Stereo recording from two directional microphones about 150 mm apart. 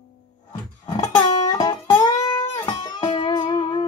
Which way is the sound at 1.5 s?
25° left (ahead or behind).